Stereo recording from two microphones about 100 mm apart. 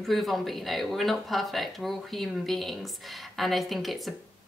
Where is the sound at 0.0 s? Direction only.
Centre (ahead or behind).